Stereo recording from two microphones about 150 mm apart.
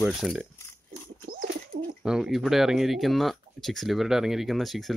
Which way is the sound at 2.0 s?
5° right (ahead or behind).